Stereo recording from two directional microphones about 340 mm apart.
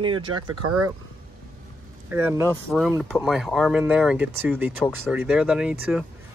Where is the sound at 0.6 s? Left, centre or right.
Right.